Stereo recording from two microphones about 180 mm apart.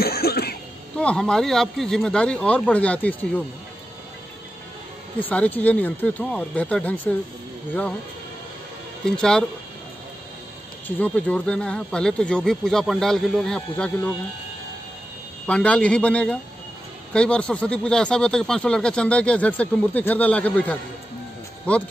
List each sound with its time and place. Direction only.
0.0 s cough: 60° left (ahead or behind)
0.9 s speech: 5° left (ahead or behind)
5.2 s speech: 10° left (ahead or behind)
9.0 s speech: 5° left (ahead or behind)
11.0 s speech: 10° left (ahead or behind)
15.4 s speech: 5° left (ahead or behind)